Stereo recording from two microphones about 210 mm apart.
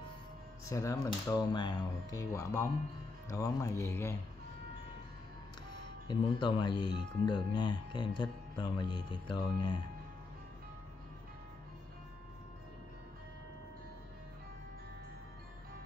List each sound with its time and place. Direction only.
0.7 s speech: 15° left (ahead or behind)
6.0 s speech: 20° left (ahead or behind)